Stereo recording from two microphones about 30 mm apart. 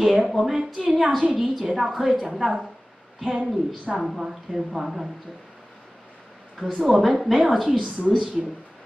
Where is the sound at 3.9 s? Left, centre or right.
Centre.